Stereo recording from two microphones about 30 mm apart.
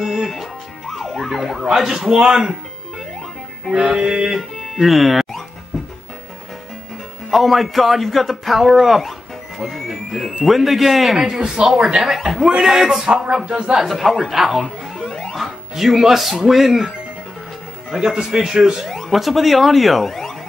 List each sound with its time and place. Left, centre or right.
0.0 s music: centre
2.2 s speech: centre
3.7 s a man's voice: centre
4.0 s speech: right
4.4 s music: centre
7.2 s a man's voice: centre
11.1 s speech: right
13.8 s a man's voice: centre
15.0 s music: centre
15.3 s speech: centre
18.1 s speech: right
18.9 s a sound: centre
19.1 s a man's voice: centre